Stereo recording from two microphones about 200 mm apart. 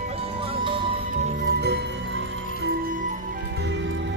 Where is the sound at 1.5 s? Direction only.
55° right (ahead or behind); by 3.3 s 40° right (ahead or behind).